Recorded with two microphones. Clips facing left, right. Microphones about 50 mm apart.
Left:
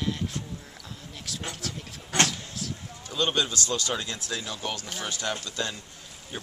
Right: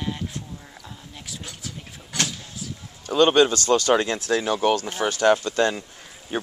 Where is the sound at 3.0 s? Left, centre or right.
Right.